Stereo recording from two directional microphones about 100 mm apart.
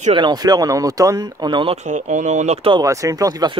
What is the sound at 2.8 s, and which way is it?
Speech, 30° right (ahead or behind).